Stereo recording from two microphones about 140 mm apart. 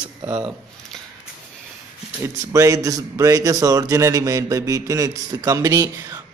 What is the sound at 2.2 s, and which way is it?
A man's voice, 20° right (ahead or behind).